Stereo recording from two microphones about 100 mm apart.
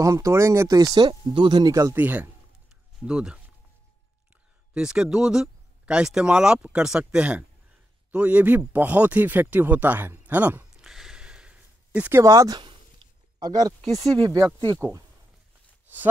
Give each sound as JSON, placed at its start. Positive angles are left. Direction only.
{"t": 0.0, "sound": "speech", "side_deg": -30}
{"t": 1.6, "sound": "speech", "side_deg": -35}
{"t": 2.0, "sound": "speech", "side_deg": -15}
{"t": 4.7, "sound": "speech", "side_deg": -10}
{"t": 10.8, "sound": "a sound", "side_deg": -5}
{"t": 12.1, "sound": "speech", "side_deg": -30}